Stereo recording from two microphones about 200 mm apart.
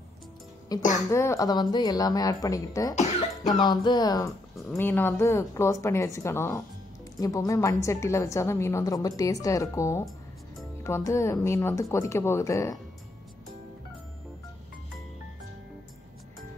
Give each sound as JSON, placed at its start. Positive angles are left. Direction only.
{"t": 0.7, "sound": "a woman's voice", "side_deg": 20}